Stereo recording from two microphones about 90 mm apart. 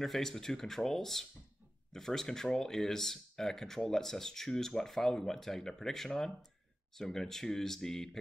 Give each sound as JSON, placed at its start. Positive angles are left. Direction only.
{"t": 0.0, "sound": "speech", "side_deg": 5}